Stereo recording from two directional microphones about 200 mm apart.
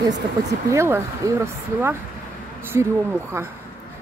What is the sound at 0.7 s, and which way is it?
Speech, 15° right (ahead or behind).